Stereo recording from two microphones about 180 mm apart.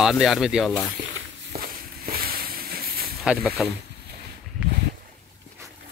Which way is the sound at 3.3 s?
5° right (ahead or behind).